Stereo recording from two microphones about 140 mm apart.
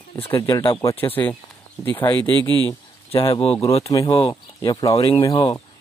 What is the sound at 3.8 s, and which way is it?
Speech, 25° left (ahead or behind).